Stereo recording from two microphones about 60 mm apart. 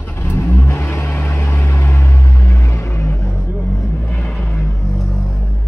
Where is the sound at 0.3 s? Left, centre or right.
Left.